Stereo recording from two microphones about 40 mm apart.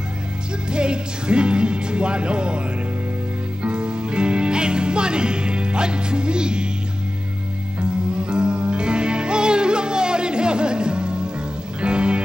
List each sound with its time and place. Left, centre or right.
0.7 s music: right
3.6 s music: right
8.1 s music: right